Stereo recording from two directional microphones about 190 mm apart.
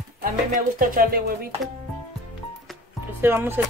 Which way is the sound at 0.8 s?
50° right (ahead or behind).